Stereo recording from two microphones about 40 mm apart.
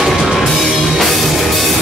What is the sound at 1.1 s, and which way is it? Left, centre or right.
Music, centre.